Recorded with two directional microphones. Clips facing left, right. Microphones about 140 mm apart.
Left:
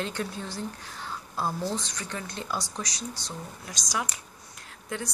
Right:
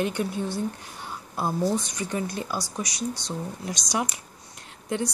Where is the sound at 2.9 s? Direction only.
65° right (ahead or behind).